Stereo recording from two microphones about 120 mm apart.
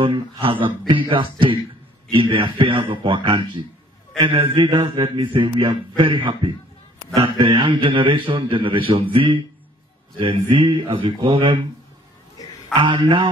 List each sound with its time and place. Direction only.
0.4 s a man's voice: 45° right (ahead or behind)
10.5 s a man's voice: 45° right (ahead or behind)
12.8 s a man's voice: 45° right (ahead or behind)